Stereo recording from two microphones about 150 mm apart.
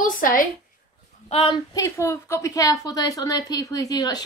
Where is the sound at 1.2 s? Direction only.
35° left (ahead or behind).